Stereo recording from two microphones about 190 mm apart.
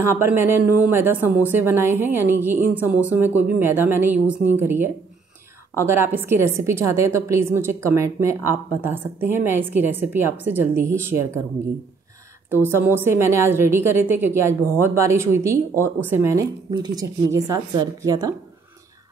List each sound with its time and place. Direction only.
0.0 s speech: 15° right (ahead or behind)
12.6 s speech: 10° right (ahead or behind)